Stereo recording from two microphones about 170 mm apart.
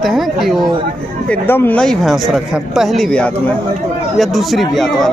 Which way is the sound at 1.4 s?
10° left (ahead or behind).